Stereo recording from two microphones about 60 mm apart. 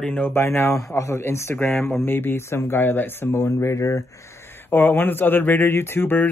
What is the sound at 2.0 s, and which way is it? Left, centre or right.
Speech, left.